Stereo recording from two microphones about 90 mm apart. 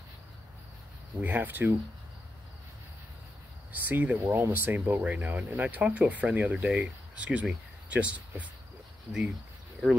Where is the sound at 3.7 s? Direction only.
20° right (ahead or behind).